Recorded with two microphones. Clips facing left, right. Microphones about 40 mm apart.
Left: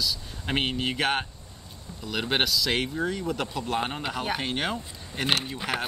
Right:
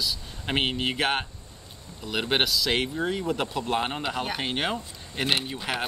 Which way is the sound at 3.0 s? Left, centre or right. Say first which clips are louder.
Right 1 dB; centre.